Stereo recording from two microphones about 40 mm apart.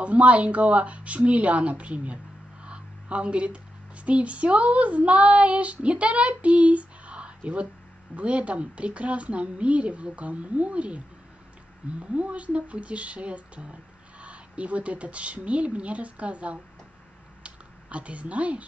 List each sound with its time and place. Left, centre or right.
0.0 s speech: right
2.6 s a sound: right
4.0 s speech: right
12.0 s speech: right
17.4 s computer keyboard: right